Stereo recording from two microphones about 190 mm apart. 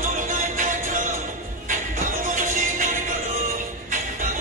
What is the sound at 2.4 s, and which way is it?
Music, 45° right (ahead or behind).